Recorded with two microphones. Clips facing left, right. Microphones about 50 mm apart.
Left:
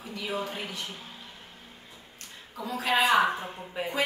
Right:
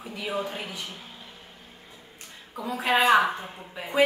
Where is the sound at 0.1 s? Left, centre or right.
Right.